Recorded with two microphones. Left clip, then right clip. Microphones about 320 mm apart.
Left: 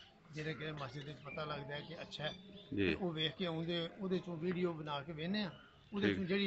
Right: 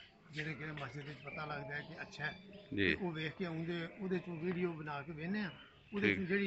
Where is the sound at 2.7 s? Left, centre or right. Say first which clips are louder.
Right 1 dB; centre.